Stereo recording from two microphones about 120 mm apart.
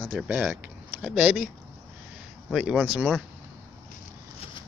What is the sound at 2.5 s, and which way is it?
Speech, centre (ahead or behind).